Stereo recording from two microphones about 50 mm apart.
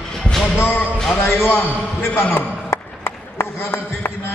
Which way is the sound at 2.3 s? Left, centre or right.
Left.